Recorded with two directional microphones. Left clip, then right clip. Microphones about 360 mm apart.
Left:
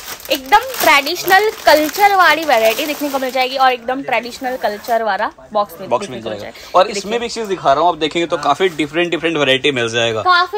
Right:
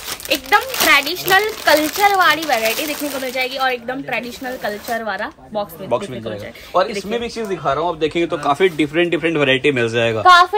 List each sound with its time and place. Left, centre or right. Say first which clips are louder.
0.3 s speech: left 3 dB; centre
5.9 s speech: left 2 dB; centre